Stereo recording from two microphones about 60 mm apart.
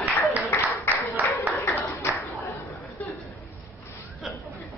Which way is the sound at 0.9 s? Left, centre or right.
Left.